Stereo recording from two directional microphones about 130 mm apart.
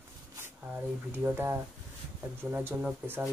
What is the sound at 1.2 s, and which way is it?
Speech, 15° right (ahead or behind).